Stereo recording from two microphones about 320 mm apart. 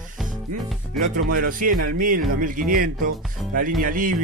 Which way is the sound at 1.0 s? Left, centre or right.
Centre.